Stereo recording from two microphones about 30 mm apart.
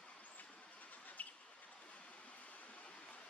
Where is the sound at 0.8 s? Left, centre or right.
Left.